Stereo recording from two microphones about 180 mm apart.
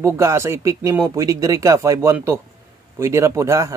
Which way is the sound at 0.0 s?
15° right (ahead or behind).